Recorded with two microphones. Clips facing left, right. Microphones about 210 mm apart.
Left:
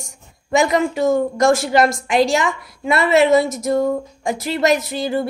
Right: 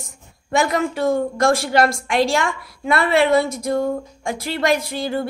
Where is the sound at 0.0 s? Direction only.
Centre (ahead or behind).